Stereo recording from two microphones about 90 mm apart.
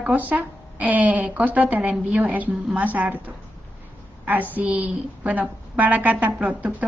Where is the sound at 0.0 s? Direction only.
20° right (ahead or behind).